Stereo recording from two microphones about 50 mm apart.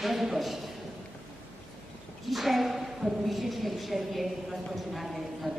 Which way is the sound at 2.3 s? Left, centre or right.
Centre.